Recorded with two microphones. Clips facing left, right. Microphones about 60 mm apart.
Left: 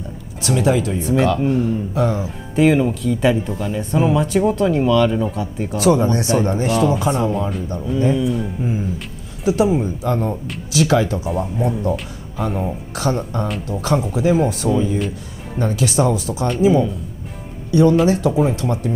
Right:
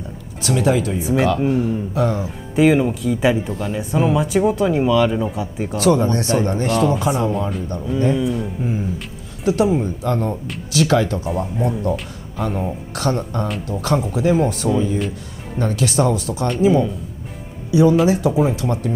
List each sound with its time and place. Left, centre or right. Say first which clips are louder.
0.4 s speech: even; centre
5.8 s speech: left 1 dB; centre